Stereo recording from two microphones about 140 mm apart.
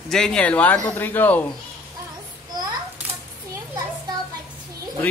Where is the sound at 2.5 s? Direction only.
30° right (ahead or behind).